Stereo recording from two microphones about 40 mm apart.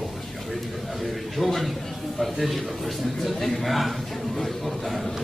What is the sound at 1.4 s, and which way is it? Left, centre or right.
A man's voice, centre.